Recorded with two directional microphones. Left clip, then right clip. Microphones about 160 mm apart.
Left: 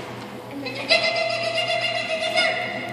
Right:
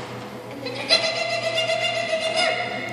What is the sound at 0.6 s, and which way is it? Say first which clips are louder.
Music: left 1 dB; 10° right (ahead or behind).